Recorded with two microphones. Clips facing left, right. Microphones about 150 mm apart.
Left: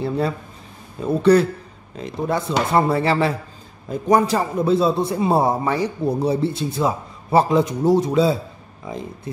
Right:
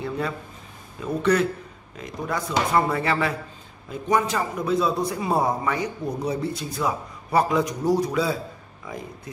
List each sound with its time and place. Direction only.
1.0 s a man's voice: 35° left (ahead or behind)